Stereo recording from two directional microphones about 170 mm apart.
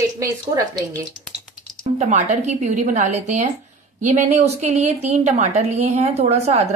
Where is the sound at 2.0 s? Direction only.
40° right (ahead or behind).